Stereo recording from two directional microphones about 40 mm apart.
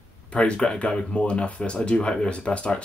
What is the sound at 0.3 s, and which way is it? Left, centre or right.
Speech, left.